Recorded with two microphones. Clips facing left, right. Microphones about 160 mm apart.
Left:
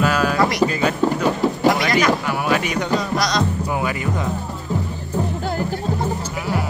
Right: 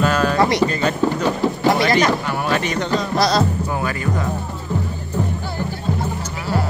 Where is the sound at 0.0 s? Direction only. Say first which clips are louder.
Right 1 dB; 10° left (ahead or behind).